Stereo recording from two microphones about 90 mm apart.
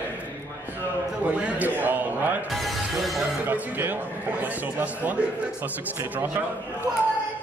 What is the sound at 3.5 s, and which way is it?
A man's voice, 20° right (ahead or behind).